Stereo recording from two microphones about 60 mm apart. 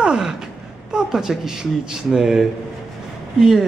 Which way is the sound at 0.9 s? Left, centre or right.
Centre.